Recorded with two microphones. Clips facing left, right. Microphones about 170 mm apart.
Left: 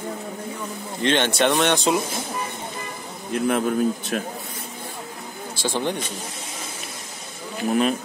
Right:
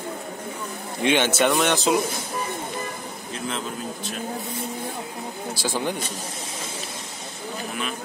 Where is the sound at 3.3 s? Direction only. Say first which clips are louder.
Left 10 dB; 60° left (ahead or behind).